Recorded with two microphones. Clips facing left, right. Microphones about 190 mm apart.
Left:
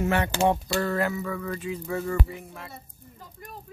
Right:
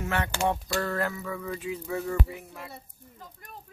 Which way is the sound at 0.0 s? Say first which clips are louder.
Left 5 dB; 15° left (ahead or behind).